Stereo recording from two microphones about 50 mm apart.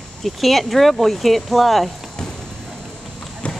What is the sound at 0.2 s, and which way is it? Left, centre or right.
Speech, centre.